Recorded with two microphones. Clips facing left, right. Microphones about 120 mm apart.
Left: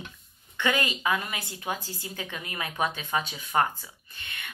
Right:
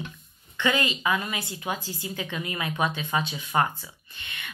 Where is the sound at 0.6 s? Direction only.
45° left (ahead or behind).